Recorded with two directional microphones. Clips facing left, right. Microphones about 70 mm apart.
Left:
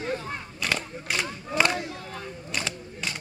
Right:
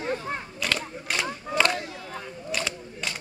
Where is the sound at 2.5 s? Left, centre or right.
Centre.